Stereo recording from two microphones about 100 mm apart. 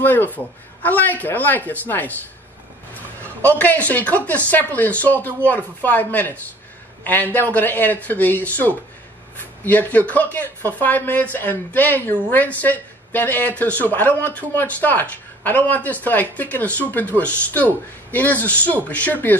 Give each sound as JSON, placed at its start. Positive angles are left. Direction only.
{"t": 0.0, "sound": "speech", "side_deg": 20}
{"t": 3.4, "sound": "speech", "side_deg": 15}
{"t": 17.1, "sound": "speech", "side_deg": -25}
{"t": 18.1, "sound": "speech", "side_deg": 15}